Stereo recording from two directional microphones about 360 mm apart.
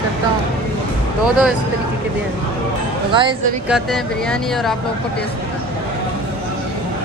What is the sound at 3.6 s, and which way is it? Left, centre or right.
Speech, centre.